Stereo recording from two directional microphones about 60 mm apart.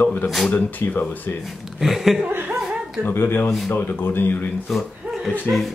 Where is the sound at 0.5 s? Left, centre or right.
Left.